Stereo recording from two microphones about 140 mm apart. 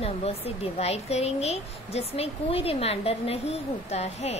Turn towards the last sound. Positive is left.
turn(degrees=50)  # may be behind; listen again after turning